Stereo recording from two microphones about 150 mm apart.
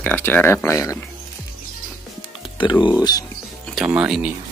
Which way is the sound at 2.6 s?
30° left (ahead or behind).